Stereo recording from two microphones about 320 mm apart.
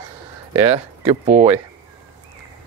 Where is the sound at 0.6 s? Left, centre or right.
Centre.